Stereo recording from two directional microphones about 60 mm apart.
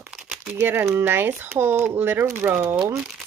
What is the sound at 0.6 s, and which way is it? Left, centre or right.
Speech, right.